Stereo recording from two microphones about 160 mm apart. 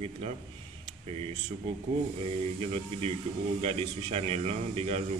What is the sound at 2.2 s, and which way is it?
Speech, 40° right (ahead or behind).